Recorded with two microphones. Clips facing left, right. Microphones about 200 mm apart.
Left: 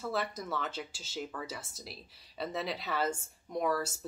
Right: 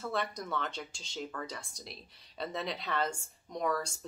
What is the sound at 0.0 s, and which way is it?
Speech, centre (ahead or behind).